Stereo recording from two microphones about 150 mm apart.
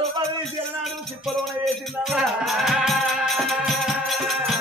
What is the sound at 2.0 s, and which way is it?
Music, centre (ahead or behind).